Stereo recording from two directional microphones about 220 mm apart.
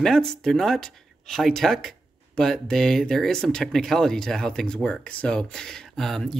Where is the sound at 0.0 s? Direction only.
Centre (ahead or behind).